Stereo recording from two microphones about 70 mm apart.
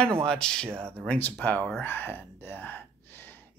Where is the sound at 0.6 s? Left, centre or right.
Right.